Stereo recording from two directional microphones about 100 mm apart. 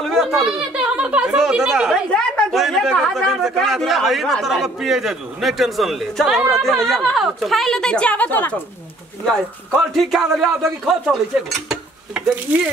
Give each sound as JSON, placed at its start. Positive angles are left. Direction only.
{"t": 0.0, "sound": "a sound", "side_deg": 5}
{"t": 2.0, "sound": "a woman's voice", "side_deg": 10}
{"t": 2.5, "sound": "a man's voice", "side_deg": 0}
{"t": 9.2, "sound": "a man's voice", "side_deg": 5}
{"t": 12.5, "sound": "speech", "side_deg": -15}